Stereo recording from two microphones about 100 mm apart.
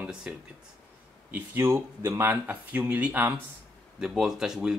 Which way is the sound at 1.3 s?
25° right (ahead or behind).